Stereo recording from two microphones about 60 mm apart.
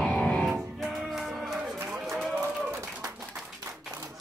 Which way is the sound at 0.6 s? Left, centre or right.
Centre.